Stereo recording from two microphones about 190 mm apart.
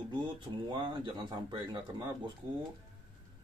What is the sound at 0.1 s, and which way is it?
Speech, 25° right (ahead or behind).